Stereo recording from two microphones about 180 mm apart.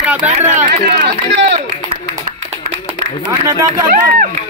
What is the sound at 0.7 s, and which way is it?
Speech, 70° right (ahead or behind).